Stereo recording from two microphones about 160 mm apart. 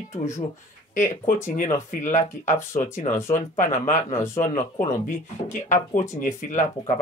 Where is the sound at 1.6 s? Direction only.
50° left (ahead or behind).